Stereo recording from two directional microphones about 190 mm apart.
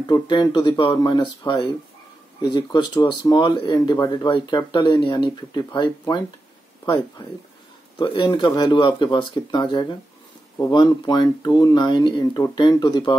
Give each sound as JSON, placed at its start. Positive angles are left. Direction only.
{"t": 0.0, "sound": "speech", "side_deg": 25}
{"t": 8.0, "sound": "speech", "side_deg": 25}